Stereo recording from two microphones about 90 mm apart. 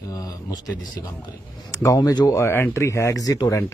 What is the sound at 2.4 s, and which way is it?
Speech, 30° left (ahead or behind).